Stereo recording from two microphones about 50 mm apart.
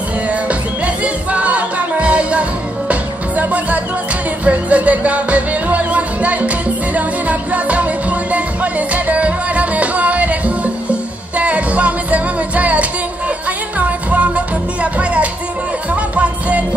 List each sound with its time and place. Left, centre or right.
0.3 s music: right